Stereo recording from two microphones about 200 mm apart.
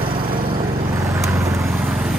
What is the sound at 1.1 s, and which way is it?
Vehicle, 15° right (ahead or behind).